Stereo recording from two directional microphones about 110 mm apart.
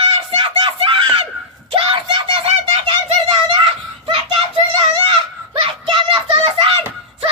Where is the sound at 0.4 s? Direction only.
50° right (ahead or behind).